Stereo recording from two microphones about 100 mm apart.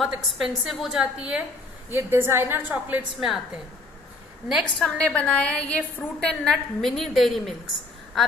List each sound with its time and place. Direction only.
0.0 s a woman's voice: centre (ahead or behind)
1.9 s a woman's voice: 20° right (ahead or behind)
4.5 s a woman's voice: 5° right (ahead or behind)
4.8 s a woman's voice: 10° left (ahead or behind)